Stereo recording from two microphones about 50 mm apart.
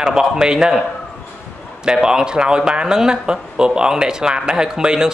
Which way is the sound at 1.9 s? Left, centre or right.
Centre.